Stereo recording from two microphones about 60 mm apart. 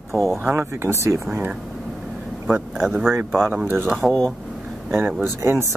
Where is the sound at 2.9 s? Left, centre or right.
Right.